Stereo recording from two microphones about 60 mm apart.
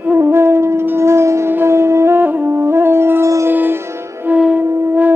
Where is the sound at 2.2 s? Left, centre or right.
Right.